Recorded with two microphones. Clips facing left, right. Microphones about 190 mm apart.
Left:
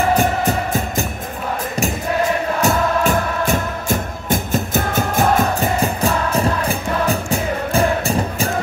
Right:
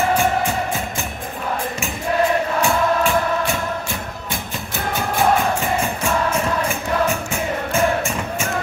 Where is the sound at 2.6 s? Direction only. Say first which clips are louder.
Left 3 dB; 40° left (ahead or behind).